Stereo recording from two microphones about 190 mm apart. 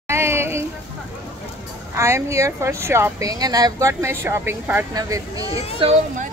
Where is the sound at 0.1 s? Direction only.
15° right (ahead or behind).